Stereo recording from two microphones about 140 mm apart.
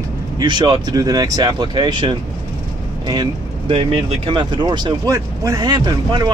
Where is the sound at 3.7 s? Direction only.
45° right (ahead or behind).